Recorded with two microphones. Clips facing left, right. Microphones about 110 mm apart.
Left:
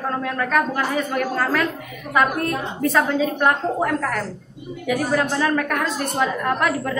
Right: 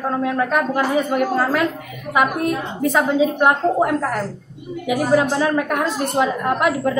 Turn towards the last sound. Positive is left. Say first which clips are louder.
# right 3 dB
turn(degrees=-15)  # may be behind; listen again after turning